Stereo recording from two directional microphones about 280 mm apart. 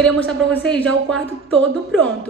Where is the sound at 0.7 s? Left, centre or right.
Centre.